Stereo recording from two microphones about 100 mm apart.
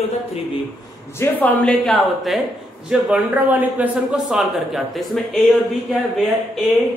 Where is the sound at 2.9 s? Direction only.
10° right (ahead or behind).